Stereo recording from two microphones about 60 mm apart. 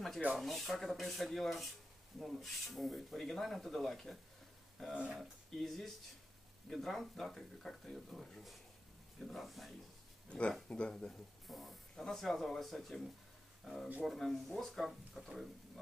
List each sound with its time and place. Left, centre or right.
0.4 s speech: centre
10.3 s speech: centre
11.4 s speech: centre